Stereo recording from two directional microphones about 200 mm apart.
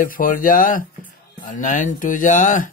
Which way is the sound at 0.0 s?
45° left (ahead or behind).